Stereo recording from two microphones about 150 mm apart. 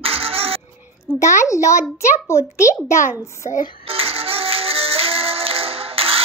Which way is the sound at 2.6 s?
20° left (ahead or behind).